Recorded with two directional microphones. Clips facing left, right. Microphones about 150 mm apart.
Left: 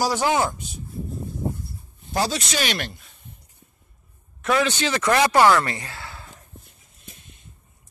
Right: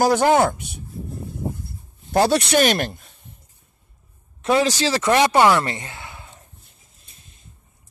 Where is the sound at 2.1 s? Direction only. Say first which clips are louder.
Right 8 dB; 60° right (ahead or behind).